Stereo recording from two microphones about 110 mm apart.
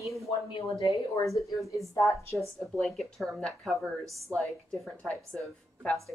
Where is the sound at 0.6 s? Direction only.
65° left (ahead or behind).